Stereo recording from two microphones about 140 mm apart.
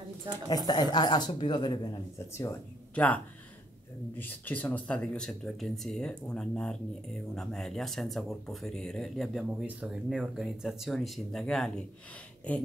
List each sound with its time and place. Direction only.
0.5 s speech: 30° left (ahead or behind)
2.1 s speech: 20° left (ahead or behind)
4.2 s speech: 10° left (ahead or behind)